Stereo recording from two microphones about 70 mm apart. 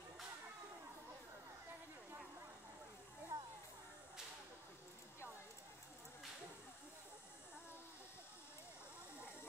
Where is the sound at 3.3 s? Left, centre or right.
Right.